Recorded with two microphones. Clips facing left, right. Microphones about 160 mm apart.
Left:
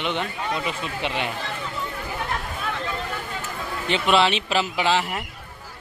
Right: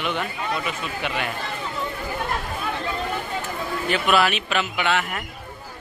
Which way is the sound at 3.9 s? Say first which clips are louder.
Left 1 dB; 25° left (ahead or behind).